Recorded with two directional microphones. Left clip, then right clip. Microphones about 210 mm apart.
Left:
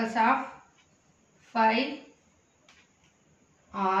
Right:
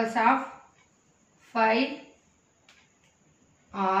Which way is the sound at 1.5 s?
10° left (ahead or behind).